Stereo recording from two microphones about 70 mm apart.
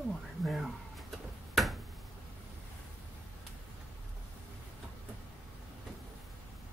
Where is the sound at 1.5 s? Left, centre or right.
Centre.